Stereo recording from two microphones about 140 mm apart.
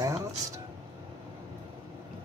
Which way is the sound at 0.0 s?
25° right (ahead or behind).